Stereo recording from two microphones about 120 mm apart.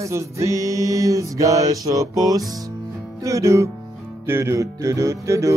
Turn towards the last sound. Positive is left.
turn(degrees=-25)  # may be behind; listen again after turning